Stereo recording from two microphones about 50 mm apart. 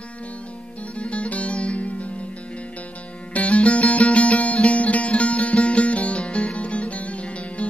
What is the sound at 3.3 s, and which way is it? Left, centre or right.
Music, left.